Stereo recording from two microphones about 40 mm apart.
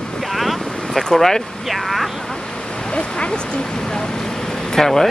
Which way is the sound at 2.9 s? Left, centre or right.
Left.